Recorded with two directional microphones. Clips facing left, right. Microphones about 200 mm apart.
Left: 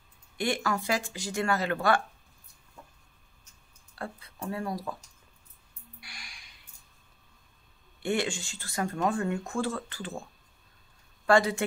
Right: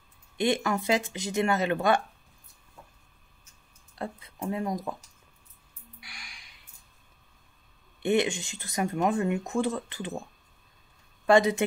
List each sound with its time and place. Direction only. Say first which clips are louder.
0.4 s speech: right 3 dB; 20° right (ahead or behind)
3.9 s speech: right 3 dB; 20° right (ahead or behind)
8.0 s speech: right 4 dB; 20° right (ahead or behind)
11.2 s speech: right 2 dB; 20° right (ahead or behind)